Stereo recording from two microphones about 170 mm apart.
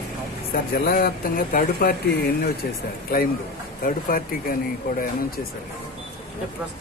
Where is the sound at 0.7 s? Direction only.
60° left (ahead or behind).